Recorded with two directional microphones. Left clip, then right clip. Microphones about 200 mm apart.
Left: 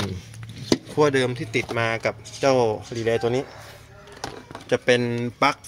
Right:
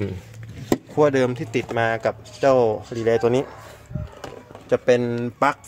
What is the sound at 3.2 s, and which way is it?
Speech, 30° right (ahead or behind).